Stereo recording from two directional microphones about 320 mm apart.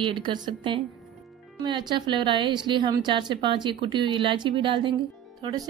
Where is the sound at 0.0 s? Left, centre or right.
Centre.